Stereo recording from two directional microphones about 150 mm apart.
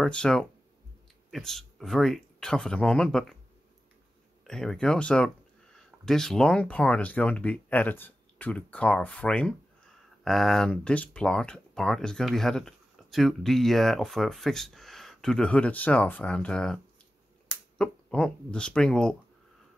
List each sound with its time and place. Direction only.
0.0 s speech: 5° left (ahead or behind)
4.5 s speech: 5° left (ahead or behind)